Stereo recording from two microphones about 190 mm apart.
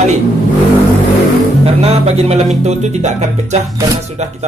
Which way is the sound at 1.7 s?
35° right (ahead or behind).